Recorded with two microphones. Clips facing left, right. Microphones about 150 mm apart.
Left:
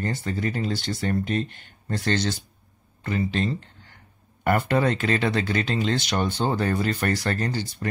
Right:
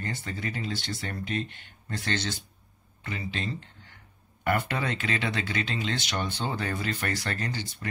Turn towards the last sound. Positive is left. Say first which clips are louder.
# left 6 dB
turn(degrees=40)  # may be behind; listen again after turning